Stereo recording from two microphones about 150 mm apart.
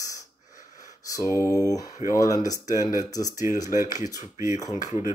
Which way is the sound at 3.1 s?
25° left (ahead or behind).